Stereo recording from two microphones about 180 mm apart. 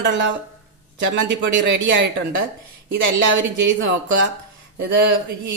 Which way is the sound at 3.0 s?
90° right.